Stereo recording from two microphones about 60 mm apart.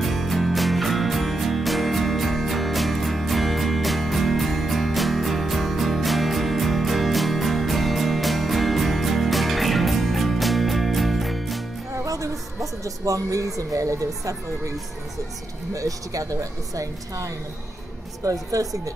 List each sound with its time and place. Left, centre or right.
0.0 s music: centre
11.9 s a sound: right
15.7 s a woman's voice: right